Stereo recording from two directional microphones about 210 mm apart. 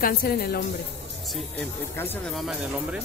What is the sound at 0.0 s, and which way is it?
Speech, 45° left (ahead or behind).